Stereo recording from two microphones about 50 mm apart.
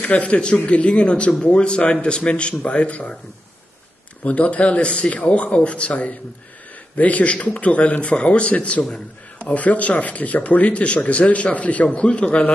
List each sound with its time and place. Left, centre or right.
0.0 s speech: left
4.2 s speech: left